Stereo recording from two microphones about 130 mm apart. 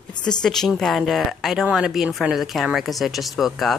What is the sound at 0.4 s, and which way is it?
Speech, 5° left (ahead or behind).